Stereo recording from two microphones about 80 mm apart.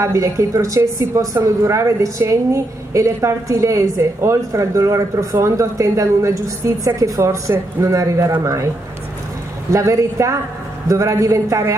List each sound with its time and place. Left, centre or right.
0.0 s a woman's voice: right
9.7 s a woman's voice: right